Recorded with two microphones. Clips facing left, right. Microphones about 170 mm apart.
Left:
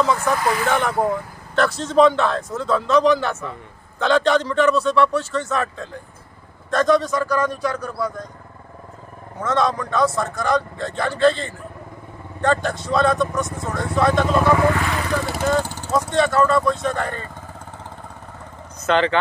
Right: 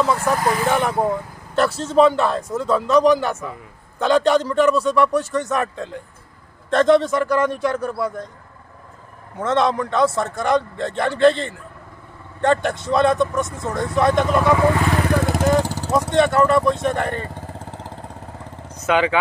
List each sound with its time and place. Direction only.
0.0 s a man's voice: 5° right (ahead or behind); by 8.3 s 25° right (ahead or behind)
9.4 s a man's voice: 25° right (ahead or behind)
15.0 s vehicle: 50° right (ahead or behind)
15.6 s vehicle: 35° right (ahead or behind)
15.9 s a man's voice: 20° right (ahead or behind)
17.3 s vehicle: 35° right (ahead or behind)
18.8 s speech: 10° right (ahead or behind)